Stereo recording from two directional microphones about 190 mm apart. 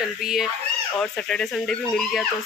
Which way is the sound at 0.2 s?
Centre (ahead or behind).